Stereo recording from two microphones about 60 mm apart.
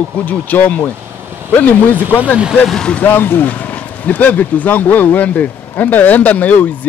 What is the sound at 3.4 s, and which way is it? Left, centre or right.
Speech, left.